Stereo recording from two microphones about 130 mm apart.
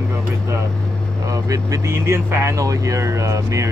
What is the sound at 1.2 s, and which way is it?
Speech, 25° right (ahead or behind).